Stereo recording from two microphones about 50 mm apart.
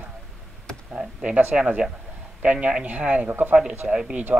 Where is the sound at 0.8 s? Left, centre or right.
Centre.